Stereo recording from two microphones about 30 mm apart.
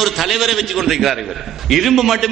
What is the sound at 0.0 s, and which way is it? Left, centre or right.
A man's voice, centre.